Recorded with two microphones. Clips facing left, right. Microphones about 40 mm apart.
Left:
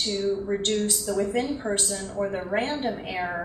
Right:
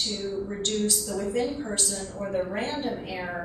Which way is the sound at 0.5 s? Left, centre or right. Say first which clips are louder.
Left 3 dB; left.